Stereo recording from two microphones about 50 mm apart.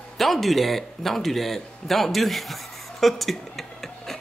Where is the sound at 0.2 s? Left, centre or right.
Centre.